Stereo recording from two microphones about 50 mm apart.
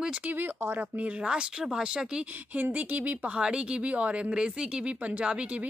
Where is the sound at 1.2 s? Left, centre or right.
Centre.